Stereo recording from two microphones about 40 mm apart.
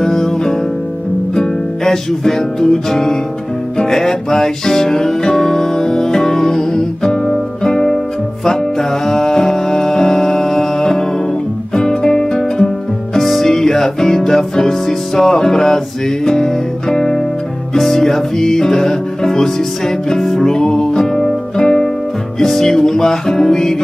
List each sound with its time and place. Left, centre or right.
0.0 s music: centre